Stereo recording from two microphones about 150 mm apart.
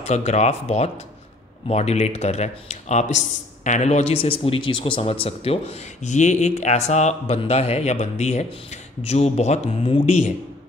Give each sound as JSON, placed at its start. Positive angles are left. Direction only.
{"t": 0.0, "sound": "a man's voice", "side_deg": 45}